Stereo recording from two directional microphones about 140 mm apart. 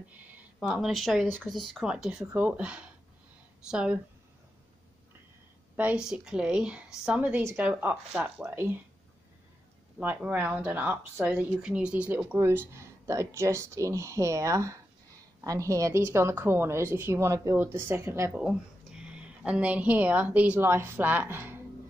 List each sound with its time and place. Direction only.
0.3 s speech: 5° right (ahead or behind)
5.8 s speech: 10° right (ahead or behind)
9.9 s a woman's voice: 10° right (ahead or behind)
18.3 s a woman's voice: 5° right (ahead or behind)